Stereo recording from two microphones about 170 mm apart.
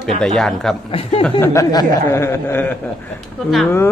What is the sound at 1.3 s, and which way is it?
Speech, 20° left (ahead or behind).